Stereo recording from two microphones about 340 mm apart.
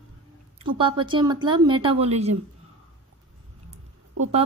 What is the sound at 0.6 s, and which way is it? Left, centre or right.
Speech, centre.